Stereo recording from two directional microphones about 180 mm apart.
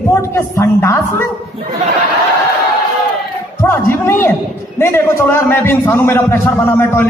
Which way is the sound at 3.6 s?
15° left (ahead or behind).